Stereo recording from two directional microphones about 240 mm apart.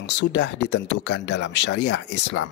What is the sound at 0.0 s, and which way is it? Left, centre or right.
Speech, left.